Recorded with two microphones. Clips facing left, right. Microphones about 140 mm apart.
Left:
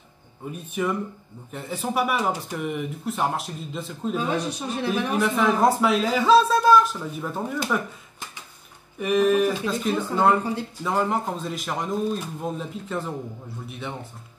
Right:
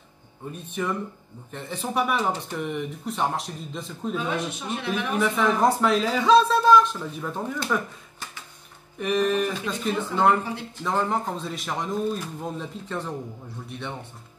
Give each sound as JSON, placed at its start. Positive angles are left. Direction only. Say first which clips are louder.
{"t": 0.5, "sound": "speech", "louder": "left 2 dB", "side_deg": 10}
{"t": 4.3, "sound": "speech", "louder": "left 2 dB", "side_deg": 35}
{"t": 5.1, "sound": "speech", "louder": "even", "side_deg": 0}
{"t": 8.9, "sound": "speech", "louder": "left 3 dB", "side_deg": 5}